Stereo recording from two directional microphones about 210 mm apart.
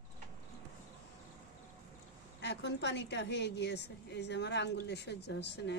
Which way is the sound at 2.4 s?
55° left (ahead or behind).